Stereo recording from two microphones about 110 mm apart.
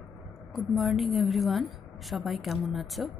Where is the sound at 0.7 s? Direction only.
Centre (ahead or behind).